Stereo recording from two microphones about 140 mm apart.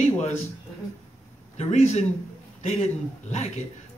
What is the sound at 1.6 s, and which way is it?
A man's voice, 55° left (ahead or behind).